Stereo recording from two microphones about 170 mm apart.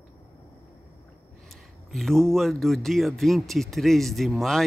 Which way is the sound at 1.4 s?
Centre (ahead or behind).